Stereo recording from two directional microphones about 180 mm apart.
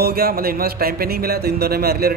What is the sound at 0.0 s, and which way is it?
Speech, 60° right (ahead or behind).